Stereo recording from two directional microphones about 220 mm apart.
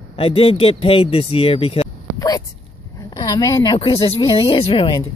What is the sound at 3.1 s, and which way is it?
Speech, 20° left (ahead or behind).